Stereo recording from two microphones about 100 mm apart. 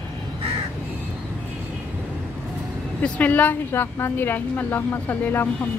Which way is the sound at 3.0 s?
15° left (ahead or behind).